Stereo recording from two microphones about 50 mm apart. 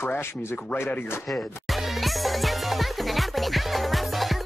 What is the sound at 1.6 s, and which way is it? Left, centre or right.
Music, centre.